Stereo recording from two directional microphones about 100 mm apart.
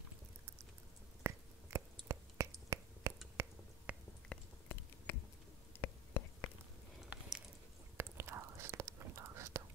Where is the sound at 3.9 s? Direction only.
10° right (ahead or behind).